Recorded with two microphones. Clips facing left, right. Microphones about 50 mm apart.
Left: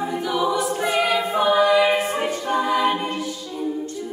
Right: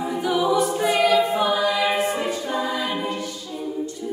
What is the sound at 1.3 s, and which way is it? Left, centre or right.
Choir, left.